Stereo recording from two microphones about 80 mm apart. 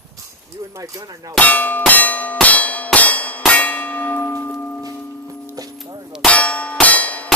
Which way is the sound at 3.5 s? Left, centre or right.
Left.